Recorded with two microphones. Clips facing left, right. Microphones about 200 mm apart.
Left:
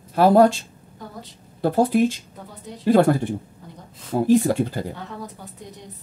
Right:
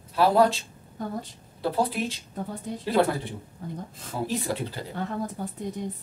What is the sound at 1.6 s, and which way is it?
Speech, 50° left (ahead or behind).